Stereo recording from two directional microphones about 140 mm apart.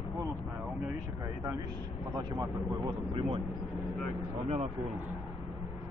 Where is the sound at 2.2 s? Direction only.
35° right (ahead or behind).